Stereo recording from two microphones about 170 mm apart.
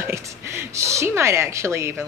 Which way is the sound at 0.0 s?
15° right (ahead or behind).